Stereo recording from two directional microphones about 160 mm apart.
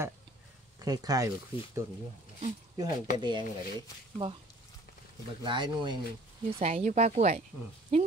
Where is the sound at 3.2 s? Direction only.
30° right (ahead or behind).